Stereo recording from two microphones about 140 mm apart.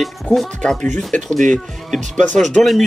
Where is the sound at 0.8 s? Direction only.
60° right (ahead or behind).